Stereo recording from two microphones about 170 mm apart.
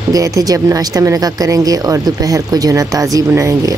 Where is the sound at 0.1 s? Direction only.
20° right (ahead or behind).